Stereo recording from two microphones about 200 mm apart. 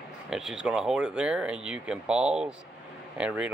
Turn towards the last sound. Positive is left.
turn(degrees=-5)  # may be behind; listen again after turning